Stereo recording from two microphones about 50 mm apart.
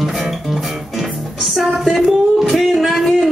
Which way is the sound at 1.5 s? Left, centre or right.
Centre.